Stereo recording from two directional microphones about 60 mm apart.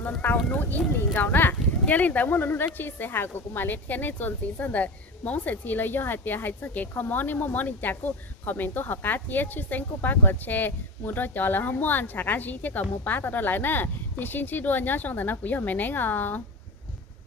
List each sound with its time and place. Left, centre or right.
0.0 s speech: left